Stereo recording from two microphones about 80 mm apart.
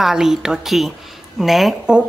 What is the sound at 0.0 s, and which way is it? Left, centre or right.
A woman's voice, centre.